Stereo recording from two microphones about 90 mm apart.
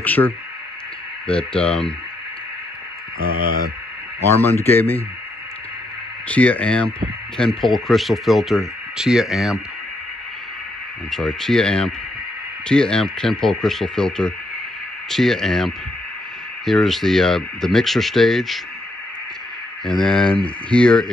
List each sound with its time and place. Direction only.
0.0 s speech: 20° left (ahead or behind)
4.3 s speech: 25° left (ahead or behind)
6.2 s speech: 15° left (ahead or behind)
7.3 s speech: 5° left (ahead or behind)
11.1 s speech: 5° left (ahead or behind)
19.8 s speech: 5° left (ahead or behind)